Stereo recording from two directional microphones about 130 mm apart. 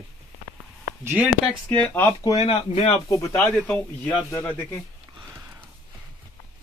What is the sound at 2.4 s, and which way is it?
Speech, 50° left (ahead or behind).